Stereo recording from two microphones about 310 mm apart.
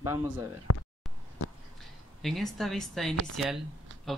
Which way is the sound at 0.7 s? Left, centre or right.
Left.